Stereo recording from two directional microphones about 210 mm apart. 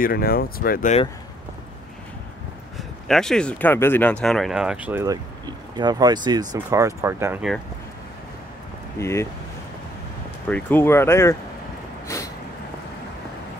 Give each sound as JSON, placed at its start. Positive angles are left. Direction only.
{"t": 0.0, "sound": "speech", "side_deg": 45}
{"t": 2.8, "sound": "speech", "side_deg": 0}
{"t": 8.9, "sound": "speech", "side_deg": 15}
{"t": 10.5, "sound": "speech", "side_deg": 10}